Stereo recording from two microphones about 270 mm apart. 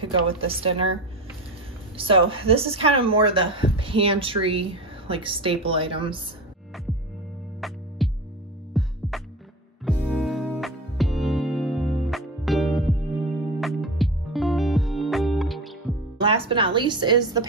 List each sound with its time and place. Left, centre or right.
0.0 s a woman's voice: centre
2.2 s a woman's voice: right
7.6 s music: centre
16.2 s a woman's voice: centre